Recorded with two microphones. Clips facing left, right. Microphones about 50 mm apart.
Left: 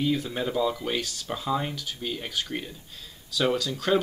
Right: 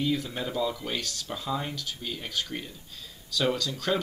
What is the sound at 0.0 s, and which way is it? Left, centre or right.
Speech, centre.